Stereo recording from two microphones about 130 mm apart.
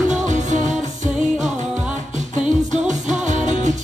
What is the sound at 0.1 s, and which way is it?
Music, 70° right (ahead or behind).